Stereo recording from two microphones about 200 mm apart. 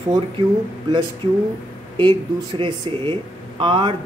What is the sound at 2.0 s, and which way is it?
Speech, 25° right (ahead or behind).